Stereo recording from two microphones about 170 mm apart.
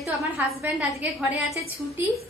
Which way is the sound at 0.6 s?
10° right (ahead or behind).